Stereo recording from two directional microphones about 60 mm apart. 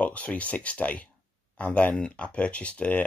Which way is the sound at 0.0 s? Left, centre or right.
Left.